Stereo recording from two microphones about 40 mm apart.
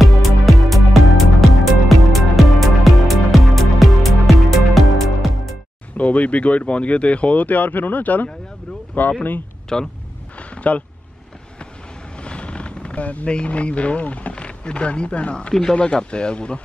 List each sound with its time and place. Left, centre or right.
0.0 s music: centre
5.9 s speech: left
9.7 s speech: centre
10.5 s a sound: left
12.2 s vehicle: left
13.3 s speech: left
14.3 s speech: left